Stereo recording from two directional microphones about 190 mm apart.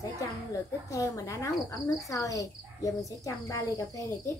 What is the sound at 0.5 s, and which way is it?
Speech, 15° left (ahead or behind).